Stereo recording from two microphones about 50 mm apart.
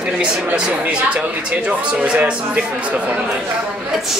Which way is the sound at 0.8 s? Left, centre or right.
Right.